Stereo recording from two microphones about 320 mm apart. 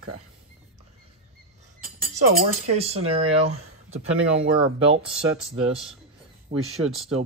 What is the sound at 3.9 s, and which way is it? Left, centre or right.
Speech, centre.